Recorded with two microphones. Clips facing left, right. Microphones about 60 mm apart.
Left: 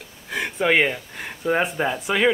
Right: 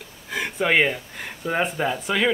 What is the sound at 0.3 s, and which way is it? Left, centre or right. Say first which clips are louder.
Speech: left 1 dB; centre.